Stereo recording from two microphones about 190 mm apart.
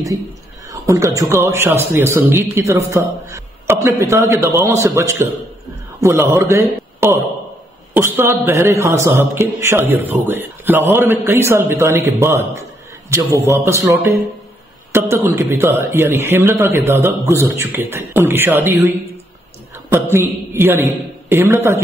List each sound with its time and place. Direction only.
0.7 s a man's voice: 15° right (ahead or behind)
19.9 s a man's voice: 15° right (ahead or behind)